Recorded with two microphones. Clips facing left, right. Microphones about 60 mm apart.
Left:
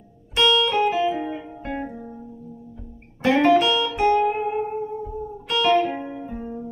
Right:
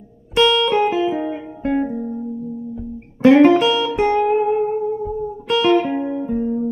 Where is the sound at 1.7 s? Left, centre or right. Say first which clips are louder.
Right 11 dB; centre.